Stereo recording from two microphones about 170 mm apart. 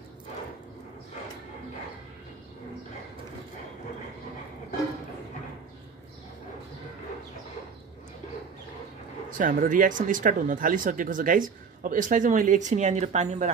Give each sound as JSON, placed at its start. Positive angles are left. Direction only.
{"t": 9.4, "sound": "speech", "side_deg": -50}